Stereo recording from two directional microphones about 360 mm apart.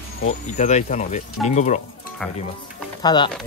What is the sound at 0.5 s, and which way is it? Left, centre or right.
Speech, centre.